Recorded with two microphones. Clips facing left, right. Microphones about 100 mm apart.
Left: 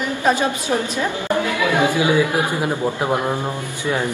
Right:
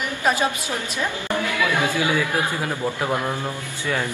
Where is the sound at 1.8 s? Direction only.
20° left (ahead or behind).